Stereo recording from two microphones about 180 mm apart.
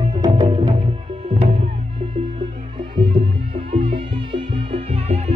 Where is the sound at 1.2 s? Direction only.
35° right (ahead or behind).